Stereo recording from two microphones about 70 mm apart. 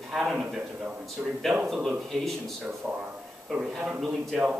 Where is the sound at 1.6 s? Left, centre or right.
Centre.